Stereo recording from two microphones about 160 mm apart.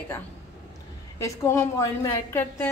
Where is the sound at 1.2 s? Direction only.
20° left (ahead or behind).